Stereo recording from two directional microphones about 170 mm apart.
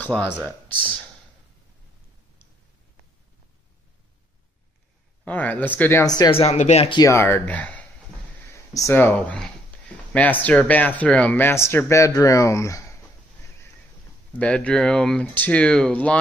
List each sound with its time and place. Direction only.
0.0 s speech: 5° left (ahead or behind)
5.2 s speech: 10° left (ahead or behind)
6.3 s speech: 40° left (ahead or behind)
7.0 s speech: 15° left (ahead or behind)
8.7 s a sound: 15° left (ahead or behind)
10.4 s speech: 10° left (ahead or behind)
14.4 s speech: 5° left (ahead or behind)